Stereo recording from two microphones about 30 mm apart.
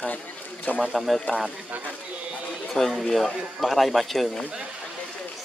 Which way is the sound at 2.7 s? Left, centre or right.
Centre.